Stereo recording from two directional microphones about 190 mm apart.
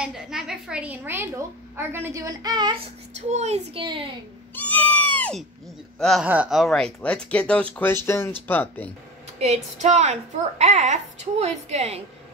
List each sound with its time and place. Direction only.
0.0 s a woman's voice: centre (ahead or behind); by 2.8 s 20° right (ahead or behind)
3.2 s a child's voice: 35° right (ahead or behind)
4.6 s goat: 10° left (ahead or behind)
5.9 s speech: centre (ahead or behind)
9.4 s a child's voice: 35° right (ahead or behind)